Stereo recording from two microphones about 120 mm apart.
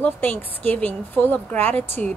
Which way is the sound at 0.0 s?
15° left (ahead or behind).